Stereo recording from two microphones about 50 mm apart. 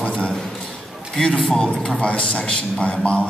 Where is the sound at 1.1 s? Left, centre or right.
Centre.